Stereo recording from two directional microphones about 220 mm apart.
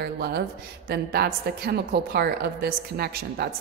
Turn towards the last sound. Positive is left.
turn(degrees=-45)  # may be behind; listen again after turning